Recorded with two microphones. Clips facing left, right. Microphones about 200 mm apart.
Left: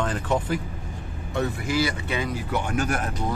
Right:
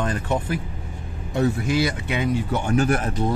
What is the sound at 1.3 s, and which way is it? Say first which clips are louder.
Speech: right 5 dB; 20° right (ahead or behind).